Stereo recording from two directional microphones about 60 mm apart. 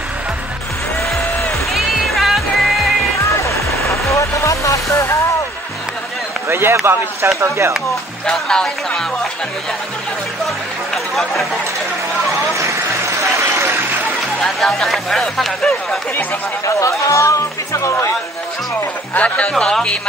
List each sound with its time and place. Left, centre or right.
1.7 s music: centre
3.4 s music: left
6.5 s speech: right
7.3 s speech: right
8.3 s speech: centre
12.5 s a sound: right
14.4 s speech: centre
16.6 s speech: left
19.1 s speech: left
19.5 s speech: centre